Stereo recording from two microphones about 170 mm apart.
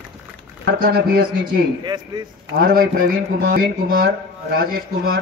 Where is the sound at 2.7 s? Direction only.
65° right (ahead or behind).